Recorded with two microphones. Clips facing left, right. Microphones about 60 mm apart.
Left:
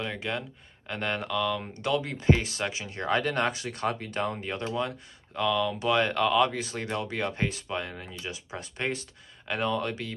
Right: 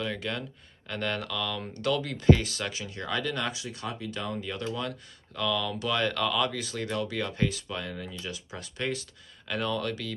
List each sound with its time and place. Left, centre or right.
0.0 s speech: centre